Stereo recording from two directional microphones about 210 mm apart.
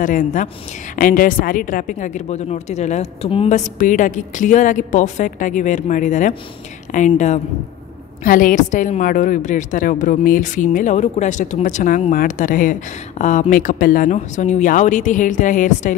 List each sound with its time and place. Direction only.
0.0 s a woman's voice: 40° left (ahead or behind)